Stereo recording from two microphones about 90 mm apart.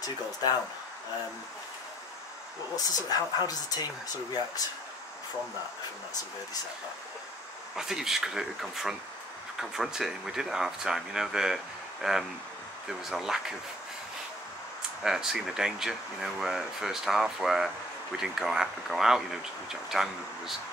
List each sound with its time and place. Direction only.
0.0 s speech: 50° left (ahead or behind)
2.7 s speech: 45° left (ahead or behind)
7.7 s speech: 5° right (ahead or behind)
15.0 s speech: 5° right (ahead or behind)